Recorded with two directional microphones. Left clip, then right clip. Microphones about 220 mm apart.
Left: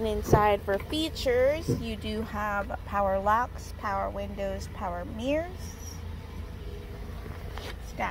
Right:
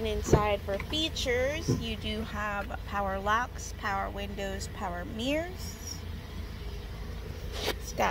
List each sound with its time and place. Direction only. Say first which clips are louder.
0.0 s a woman's voice: left 4 dB; 25° left (ahead or behind); by 5.5 s centre (ahead or behind)
8.0 s speech: right 4 dB; 40° right (ahead or behind)